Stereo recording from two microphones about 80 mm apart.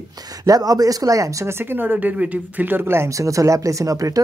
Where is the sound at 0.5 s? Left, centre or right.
Right.